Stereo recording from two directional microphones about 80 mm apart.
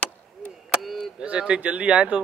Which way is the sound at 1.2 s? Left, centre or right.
Centre.